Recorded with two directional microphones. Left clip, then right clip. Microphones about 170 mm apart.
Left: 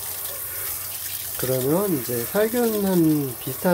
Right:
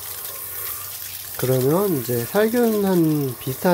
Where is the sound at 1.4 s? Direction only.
25° right (ahead or behind).